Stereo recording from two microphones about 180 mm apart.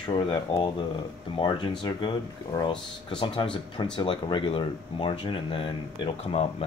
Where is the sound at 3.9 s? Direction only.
25° left (ahead or behind).